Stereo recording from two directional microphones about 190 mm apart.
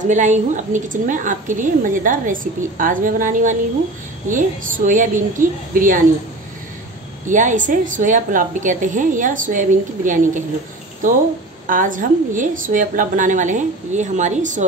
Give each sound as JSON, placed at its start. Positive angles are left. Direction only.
{"t": 0.0, "sound": "a woman's voice", "side_deg": -40}
{"t": 7.2, "sound": "a woman's voice", "side_deg": -40}
{"t": 11.6, "sound": "a woman's voice", "side_deg": -45}